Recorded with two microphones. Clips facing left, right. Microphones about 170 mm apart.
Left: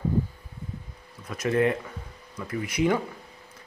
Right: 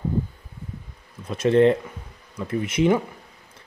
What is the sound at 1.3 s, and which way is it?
Speech, 30° right (ahead or behind).